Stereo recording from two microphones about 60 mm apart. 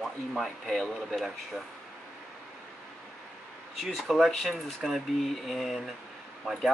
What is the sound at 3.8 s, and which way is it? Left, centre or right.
Speech, centre.